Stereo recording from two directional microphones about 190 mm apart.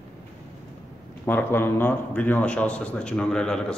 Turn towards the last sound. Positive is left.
turn(degrees=5)  # may be behind; listen again after turning